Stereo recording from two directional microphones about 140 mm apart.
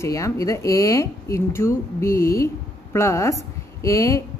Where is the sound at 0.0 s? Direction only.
25° left (ahead or behind).